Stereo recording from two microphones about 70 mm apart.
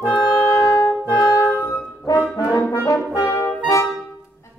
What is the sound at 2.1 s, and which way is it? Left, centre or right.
Brass instrument, left.